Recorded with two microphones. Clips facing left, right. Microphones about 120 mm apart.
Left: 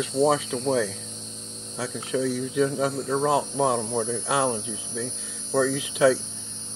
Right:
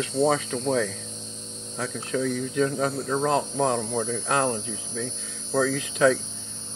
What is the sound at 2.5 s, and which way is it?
Speech, 5° left (ahead or behind).